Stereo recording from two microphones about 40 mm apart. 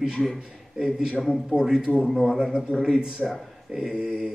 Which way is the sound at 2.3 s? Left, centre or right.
Centre.